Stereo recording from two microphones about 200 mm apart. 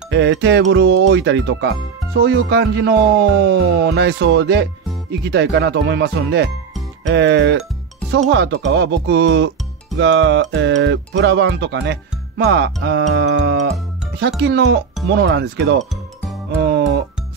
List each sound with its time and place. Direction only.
0.1 s speech: 65° right (ahead or behind)
16.6 s music: 55° right (ahead or behind)